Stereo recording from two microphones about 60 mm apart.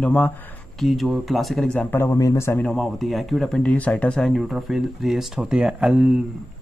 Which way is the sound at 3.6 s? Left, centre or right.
Left.